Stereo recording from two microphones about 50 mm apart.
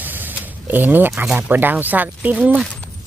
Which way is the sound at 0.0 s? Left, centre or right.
Right.